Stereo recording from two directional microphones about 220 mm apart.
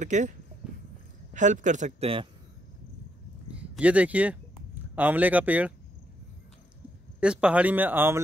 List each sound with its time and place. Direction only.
0.0 s speech: 35° right (ahead or behind)
0.6 s walk: 5° right (ahead or behind)
1.3 s speech: 35° right (ahead or behind)
3.4 s a sound: 5° right (ahead or behind)
4.9 s a man's voice: 10° right (ahead or behind)
7.2 s a man's voice: 5° right (ahead or behind)